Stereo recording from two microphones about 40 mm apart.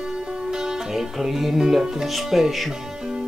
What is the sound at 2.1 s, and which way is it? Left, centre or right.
Speech, centre.